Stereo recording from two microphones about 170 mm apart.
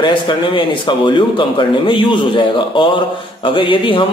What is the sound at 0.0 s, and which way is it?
Speech, 30° left (ahead or behind).